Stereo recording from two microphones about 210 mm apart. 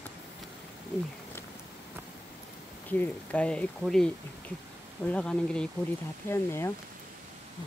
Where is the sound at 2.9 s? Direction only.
5° left (ahead or behind).